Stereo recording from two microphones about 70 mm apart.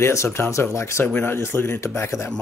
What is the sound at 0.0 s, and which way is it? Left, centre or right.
Speech, left.